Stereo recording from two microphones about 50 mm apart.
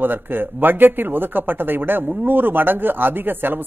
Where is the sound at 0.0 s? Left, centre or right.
Right.